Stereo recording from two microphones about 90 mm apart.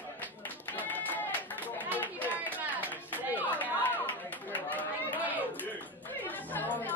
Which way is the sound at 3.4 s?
20° left (ahead or behind).